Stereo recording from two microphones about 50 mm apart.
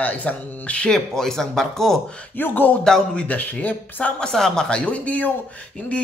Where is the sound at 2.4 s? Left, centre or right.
Left.